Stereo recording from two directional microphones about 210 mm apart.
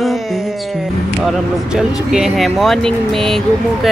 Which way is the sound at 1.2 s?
5° right (ahead or behind).